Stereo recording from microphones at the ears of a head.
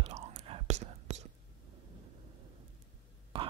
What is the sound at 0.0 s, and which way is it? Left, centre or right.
Whispering, right.